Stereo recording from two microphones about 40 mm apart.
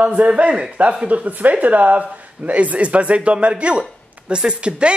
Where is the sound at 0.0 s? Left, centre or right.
Right.